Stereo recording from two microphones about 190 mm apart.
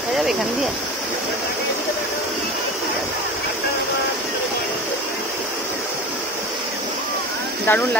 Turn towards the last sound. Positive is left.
turn(degrees=10)  # may be behind; listen again after turning